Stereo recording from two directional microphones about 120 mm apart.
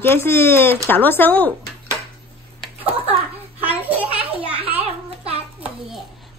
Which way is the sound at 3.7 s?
15° right (ahead or behind).